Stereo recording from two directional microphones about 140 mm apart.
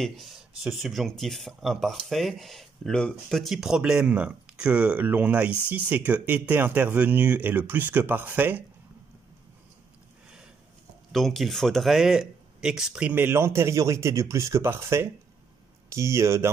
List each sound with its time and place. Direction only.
0.0 s speech: centre (ahead or behind)
11.1 s speech: centre (ahead or behind); by 16.4 s 20° right (ahead or behind)